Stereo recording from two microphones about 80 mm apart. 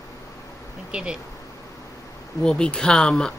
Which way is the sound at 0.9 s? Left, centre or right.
Centre.